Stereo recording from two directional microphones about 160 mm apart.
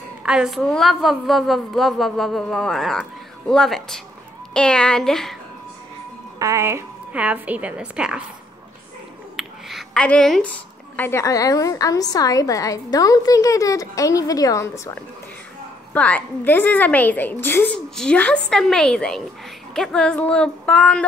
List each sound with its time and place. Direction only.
0.2 s a woman's voice: 5° right (ahead or behind)
6.4 s a woman's voice: 15° right (ahead or behind)
9.4 s finger snapping: centre (ahead or behind)
11.0 s a woman's voice: 15° left (ahead or behind)